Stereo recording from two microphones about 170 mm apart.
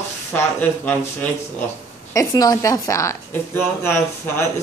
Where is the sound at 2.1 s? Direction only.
20° left (ahead or behind).